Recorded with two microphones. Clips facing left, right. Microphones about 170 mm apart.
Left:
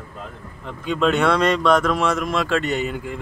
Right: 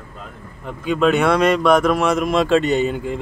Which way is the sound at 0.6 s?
10° right (ahead or behind).